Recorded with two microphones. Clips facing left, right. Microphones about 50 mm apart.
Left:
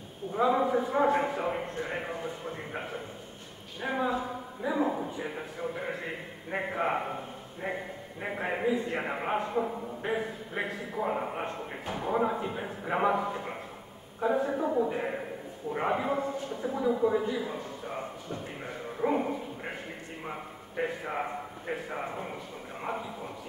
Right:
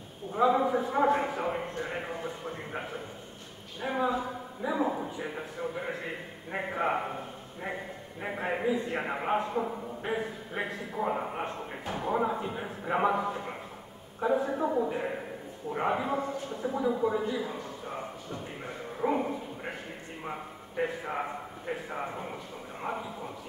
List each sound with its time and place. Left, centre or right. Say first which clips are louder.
0.3 s a man's voice: right 1 dB; centre
11.8 s speech: right 1 dB; centre
12.1 s a man's voice: left 1 dB; centre
13.2 s speech: even; centre
14.2 s a man's voice: even; centre
18.9 s bow-wow: left 1 dB; centre
20.2 s a man's voice: right 2 dB; centre